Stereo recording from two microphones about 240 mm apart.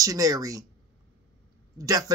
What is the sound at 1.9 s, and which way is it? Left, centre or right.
Speech, centre.